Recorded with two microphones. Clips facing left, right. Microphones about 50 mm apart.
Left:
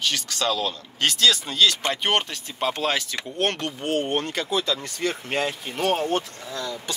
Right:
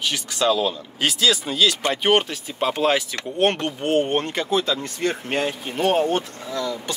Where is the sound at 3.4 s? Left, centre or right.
Right.